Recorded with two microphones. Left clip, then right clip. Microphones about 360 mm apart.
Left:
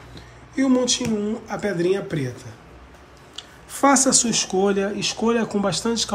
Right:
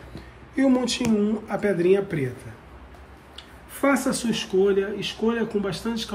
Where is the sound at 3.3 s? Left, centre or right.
Centre.